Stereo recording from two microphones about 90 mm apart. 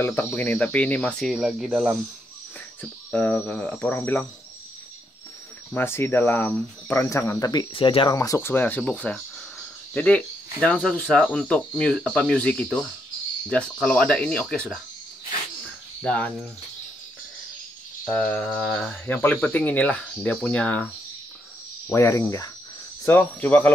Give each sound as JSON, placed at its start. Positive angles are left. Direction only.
{"t": 0.0, "sound": "speech", "side_deg": 20}
{"t": 1.2, "sound": "speech", "side_deg": -5}
{"t": 1.7, "sound": "speech", "side_deg": -15}
{"t": 2.8, "sound": "speech", "side_deg": 20}
{"t": 5.8, "sound": "speech", "side_deg": 25}
{"t": 7.1, "sound": "speech", "side_deg": 35}
{"t": 7.7, "sound": "speech", "side_deg": 70}
{"t": 8.1, "sound": "speech", "side_deg": 40}
{"t": 8.4, "sound": "speech", "side_deg": 25}
{"t": 16.0, "sound": "speech", "side_deg": 15}
{"t": 18.0, "sound": "speech", "side_deg": 10}
{"t": 21.8, "sound": "speech", "side_deg": 30}
{"t": 23.0, "sound": "speech", "side_deg": 20}